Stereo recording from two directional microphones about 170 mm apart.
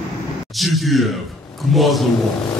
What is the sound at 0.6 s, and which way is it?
Speech, centre (ahead or behind).